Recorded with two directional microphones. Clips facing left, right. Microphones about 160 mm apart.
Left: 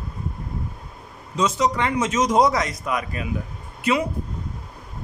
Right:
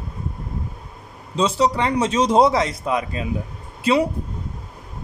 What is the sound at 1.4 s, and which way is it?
A man's voice, 30° right (ahead or behind).